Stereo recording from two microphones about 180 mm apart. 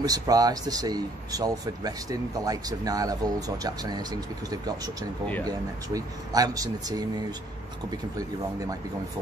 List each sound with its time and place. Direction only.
0.0 s speech: 20° right (ahead or behind)
5.2 s speech: 10° left (ahead or behind)
5.5 s speech: 20° right (ahead or behind)